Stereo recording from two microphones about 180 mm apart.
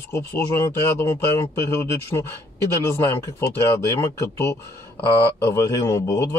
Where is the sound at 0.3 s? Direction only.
15° left (ahead or behind).